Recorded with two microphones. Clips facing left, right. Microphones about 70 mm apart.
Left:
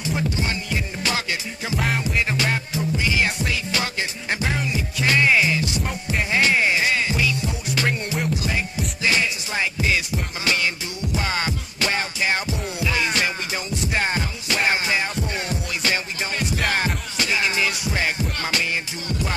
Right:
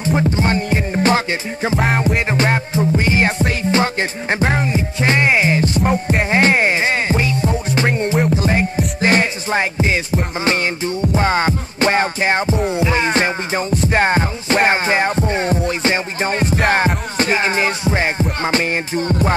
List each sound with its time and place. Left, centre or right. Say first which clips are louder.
0.0 s music: right 8 dB; right